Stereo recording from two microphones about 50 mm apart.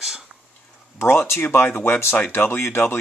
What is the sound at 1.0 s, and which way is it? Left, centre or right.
Speech, left.